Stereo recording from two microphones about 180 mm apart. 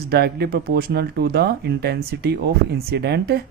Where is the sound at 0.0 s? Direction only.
60° right (ahead or behind).